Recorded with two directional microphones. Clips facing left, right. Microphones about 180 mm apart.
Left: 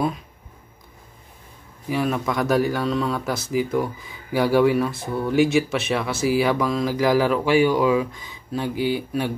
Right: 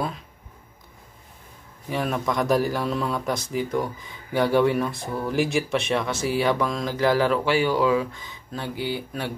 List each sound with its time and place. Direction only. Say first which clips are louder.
1.9 s a man's voice: left 3 dB; centre (ahead or behind)